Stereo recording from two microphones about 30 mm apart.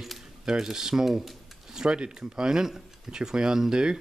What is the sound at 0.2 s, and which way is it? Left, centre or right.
Speech, right.